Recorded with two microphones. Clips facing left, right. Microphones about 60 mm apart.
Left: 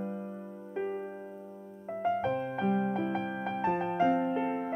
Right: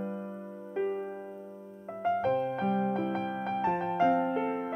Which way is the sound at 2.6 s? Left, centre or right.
Centre.